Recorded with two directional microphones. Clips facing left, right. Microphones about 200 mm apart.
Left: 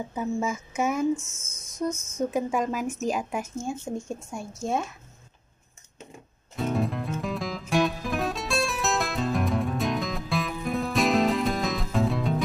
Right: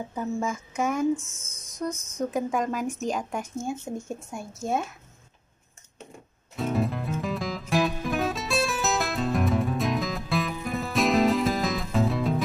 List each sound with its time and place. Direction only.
0.1 s speech: 5° left (ahead or behind)
6.5 s music: centre (ahead or behind)